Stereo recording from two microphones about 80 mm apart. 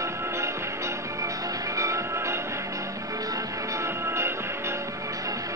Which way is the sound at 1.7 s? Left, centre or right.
Right.